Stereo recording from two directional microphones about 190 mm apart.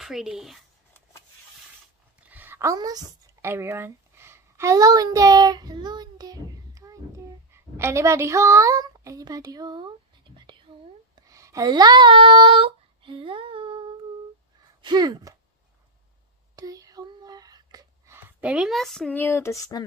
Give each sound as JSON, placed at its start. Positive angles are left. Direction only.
{"t": 0.0, "sound": "speech", "side_deg": 0}
{"t": 2.1, "sound": "a sound", "side_deg": -10}
{"t": 7.7, "sound": "a woman's voice", "side_deg": -15}
{"t": 11.1, "sound": "child singing", "side_deg": -15}
{"t": 14.8, "sound": "speech", "side_deg": -20}
{"t": 16.5, "sound": "a sound", "side_deg": -20}